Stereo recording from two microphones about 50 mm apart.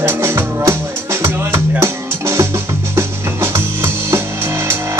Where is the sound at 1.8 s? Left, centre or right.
Right.